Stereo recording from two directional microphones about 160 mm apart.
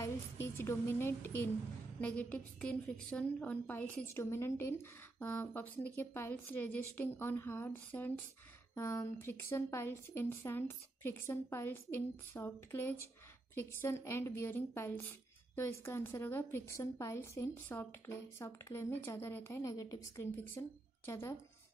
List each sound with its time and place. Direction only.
0.6 s a woman's voice: 15° left (ahead or behind)